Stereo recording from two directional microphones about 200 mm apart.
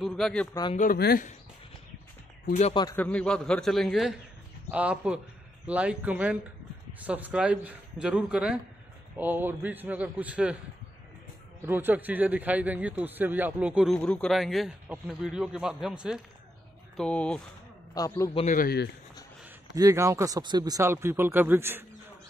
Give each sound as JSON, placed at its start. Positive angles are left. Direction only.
{"t": 0.0, "sound": "a man's voice", "side_deg": 0}
{"t": 0.7, "sound": "speech", "side_deg": 50}
{"t": 2.4, "sound": "speech", "side_deg": 40}
{"t": 2.7, "sound": "a man's voice", "side_deg": 20}
{"t": 3.0, "sound": "a man's voice", "side_deg": 5}
{"t": 11.6, "sound": "a man's voice", "side_deg": -10}
{"t": 17.9, "sound": "a man's voice", "side_deg": 15}
{"t": 18.3, "sound": "a man's voice", "side_deg": 35}
{"t": 19.4, "sound": "speech", "side_deg": -15}